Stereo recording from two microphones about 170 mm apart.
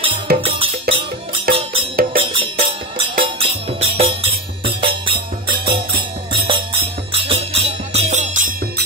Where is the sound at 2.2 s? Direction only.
30° right (ahead or behind).